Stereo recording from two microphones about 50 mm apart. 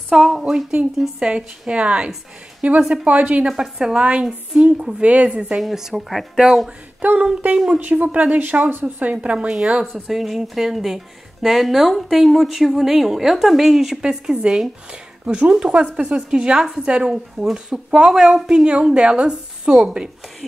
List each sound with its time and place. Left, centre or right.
0.1 s a sound: centre
0.9 s speech: centre
1.7 s a woman's voice: right
3.4 s a woman's voice: centre
3.7 s a woman's voice: right
5.6 s a woman's voice: centre
7.0 s a woman's voice: right
10.0 s speech: centre
15.2 s a woman's voice: right